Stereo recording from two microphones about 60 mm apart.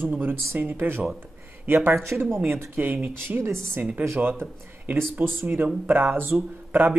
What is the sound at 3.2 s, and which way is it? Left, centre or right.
Speech, right.